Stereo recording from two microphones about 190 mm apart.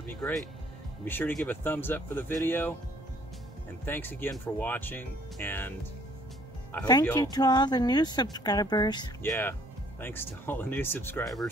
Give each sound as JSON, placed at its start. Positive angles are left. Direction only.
{"t": 0.2, "sound": "speech", "side_deg": 0}
{"t": 3.8, "sound": "speech", "side_deg": 10}
{"t": 6.8, "sound": "speech", "side_deg": 20}
{"t": 9.2, "sound": "speech", "side_deg": 10}